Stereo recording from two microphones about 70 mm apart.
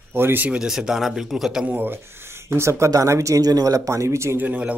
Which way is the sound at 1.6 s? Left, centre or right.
Right.